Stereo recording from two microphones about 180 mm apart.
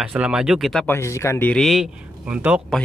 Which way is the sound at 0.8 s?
15° left (ahead or behind).